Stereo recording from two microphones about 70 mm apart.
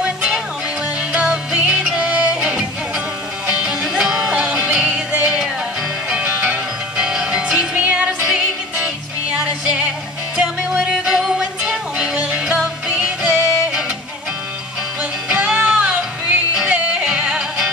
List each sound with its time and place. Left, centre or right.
0.0 s music: centre
15.2 s music: centre